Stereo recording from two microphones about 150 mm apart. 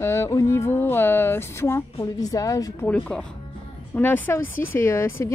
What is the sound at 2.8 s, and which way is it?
Speech, 10° left (ahead or behind).